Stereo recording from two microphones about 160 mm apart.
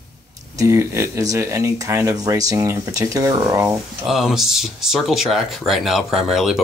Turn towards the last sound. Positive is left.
turn(degrees=0)  # may be behind; listen again after turning